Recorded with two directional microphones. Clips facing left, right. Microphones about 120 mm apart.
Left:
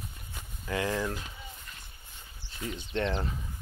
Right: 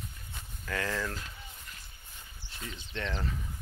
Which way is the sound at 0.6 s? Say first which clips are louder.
Left 3 dB; 20° left (ahead or behind).